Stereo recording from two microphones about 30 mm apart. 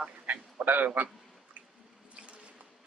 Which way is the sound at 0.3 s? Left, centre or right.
Right.